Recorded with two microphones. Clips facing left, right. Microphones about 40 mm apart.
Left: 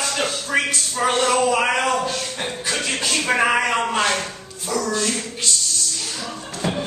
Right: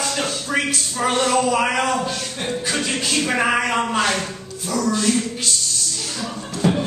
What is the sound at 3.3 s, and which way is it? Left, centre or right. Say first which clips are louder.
Speech: left 2 dB; centre.